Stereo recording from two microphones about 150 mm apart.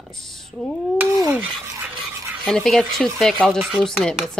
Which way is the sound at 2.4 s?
Centre (ahead or behind).